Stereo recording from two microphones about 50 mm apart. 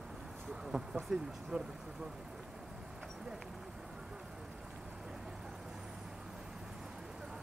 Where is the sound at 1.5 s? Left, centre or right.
Right.